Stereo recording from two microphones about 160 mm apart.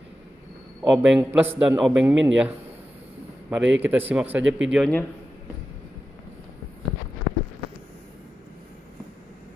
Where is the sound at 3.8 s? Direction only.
10° right (ahead or behind).